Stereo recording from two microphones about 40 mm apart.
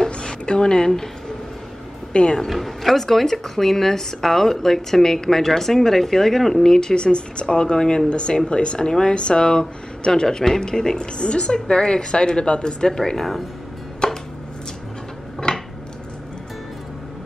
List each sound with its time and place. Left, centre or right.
0.0 s a sound: centre
2.3 s speech: centre
14.0 s chopping: left
15.5 s dishes: left